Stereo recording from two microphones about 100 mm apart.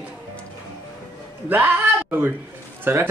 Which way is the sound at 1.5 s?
15° right (ahead or behind).